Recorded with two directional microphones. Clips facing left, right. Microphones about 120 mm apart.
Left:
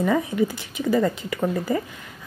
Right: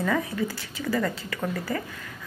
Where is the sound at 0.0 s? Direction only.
20° left (ahead or behind).